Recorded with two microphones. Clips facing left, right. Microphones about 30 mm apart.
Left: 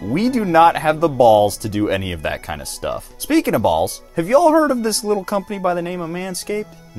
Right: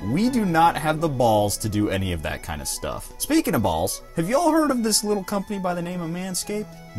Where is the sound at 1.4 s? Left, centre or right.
Left.